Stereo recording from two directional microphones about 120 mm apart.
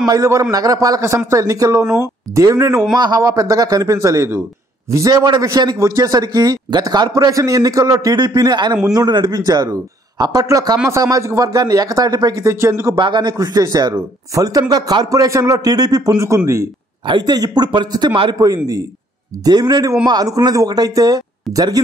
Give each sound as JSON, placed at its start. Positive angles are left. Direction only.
{"t": 0.0, "sound": "a man's voice", "side_deg": -30}
{"t": 13.0, "sound": "a man's voice", "side_deg": -40}
{"t": 19.4, "sound": "a man's voice", "side_deg": -35}